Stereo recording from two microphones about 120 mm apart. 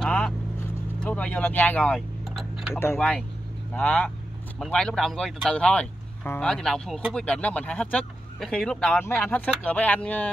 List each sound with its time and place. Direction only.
0.0 s vehicle: 10° left (ahead or behind)
1.0 s speech: 10° left (ahead or behind)
2.2 s tick-tock: centre (ahead or behind)
3.0 s speech: 5° left (ahead or behind)
8.9 s speech: 20° left (ahead or behind)